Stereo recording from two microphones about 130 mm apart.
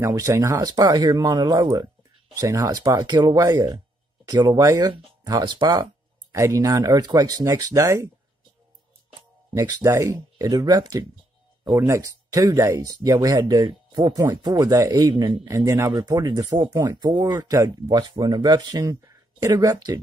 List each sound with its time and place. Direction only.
0.0 s speech: 25° right (ahead or behind)
9.6 s speech: 25° right (ahead or behind)